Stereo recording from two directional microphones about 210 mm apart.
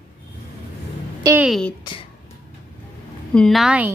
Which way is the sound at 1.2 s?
10° right (ahead or behind).